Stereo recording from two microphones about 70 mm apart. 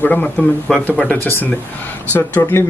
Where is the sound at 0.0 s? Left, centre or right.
Left.